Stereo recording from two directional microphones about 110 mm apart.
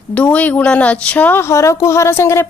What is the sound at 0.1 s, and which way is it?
Speech, 15° left (ahead or behind).